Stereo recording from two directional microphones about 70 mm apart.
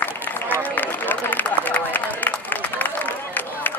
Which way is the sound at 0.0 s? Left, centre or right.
Left.